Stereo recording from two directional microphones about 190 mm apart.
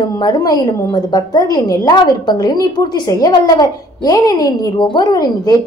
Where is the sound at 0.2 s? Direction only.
20° left (ahead or behind).